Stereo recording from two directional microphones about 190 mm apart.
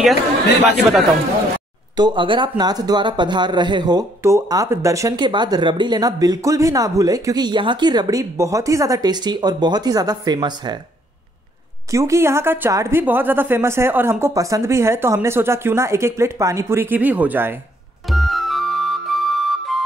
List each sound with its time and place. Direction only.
2.0 s speech: 25° right (ahead or behind)
11.9 s a woman's voice: 15° right (ahead or behind)
18.0 s music: centre (ahead or behind)